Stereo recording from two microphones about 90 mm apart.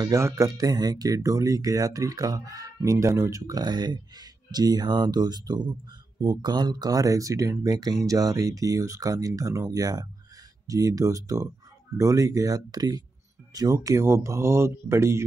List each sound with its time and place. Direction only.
0.0 s speech: 35° right (ahead or behind)